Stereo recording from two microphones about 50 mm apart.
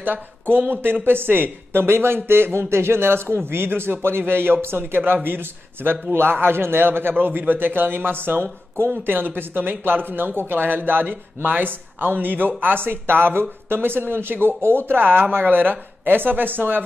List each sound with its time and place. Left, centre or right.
0.0 s speech: right